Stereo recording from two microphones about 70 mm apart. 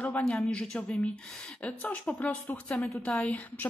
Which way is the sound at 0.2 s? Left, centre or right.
Centre.